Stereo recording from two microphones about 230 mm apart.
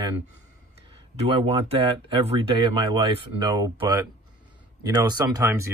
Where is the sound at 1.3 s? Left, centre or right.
Right.